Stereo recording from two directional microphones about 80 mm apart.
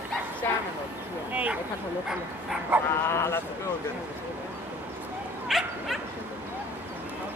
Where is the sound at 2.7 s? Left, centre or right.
Right.